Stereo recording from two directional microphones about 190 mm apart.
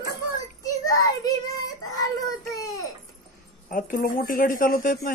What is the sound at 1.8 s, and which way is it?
Child singing, 20° left (ahead or behind).